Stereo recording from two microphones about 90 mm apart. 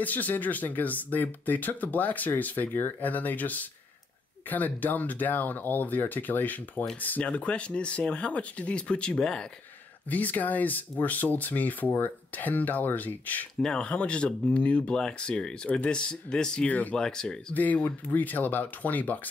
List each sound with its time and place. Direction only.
0.0 s speech: 20° left (ahead or behind)
13.6 s speech: 10° left (ahead or behind)
17.6 s speech: 20° left (ahead or behind)